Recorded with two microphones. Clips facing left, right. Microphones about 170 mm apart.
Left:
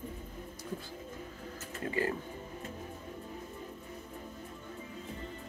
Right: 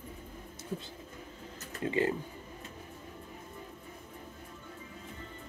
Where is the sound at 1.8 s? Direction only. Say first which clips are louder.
Right 3 dB; 20° right (ahead or behind).